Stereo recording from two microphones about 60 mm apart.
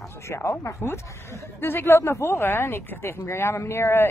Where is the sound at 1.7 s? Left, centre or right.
Left.